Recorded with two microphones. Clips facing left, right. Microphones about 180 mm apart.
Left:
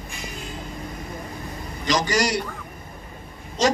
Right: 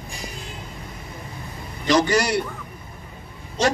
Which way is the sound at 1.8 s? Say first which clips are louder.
Right 3 dB; 55° right (ahead or behind).